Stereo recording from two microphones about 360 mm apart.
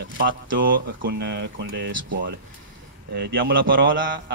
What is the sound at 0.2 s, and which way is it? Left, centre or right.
Speech, right.